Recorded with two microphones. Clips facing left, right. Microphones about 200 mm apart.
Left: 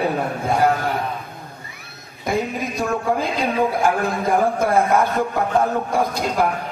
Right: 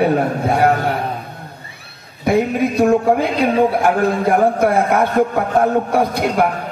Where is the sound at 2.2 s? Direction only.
65° right (ahead or behind).